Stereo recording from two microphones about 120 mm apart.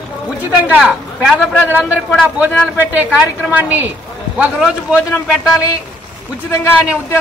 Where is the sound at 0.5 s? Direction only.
10° right (ahead or behind).